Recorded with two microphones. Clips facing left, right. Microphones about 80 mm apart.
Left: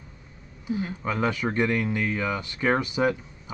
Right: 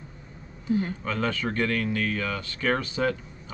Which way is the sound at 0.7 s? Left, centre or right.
Centre.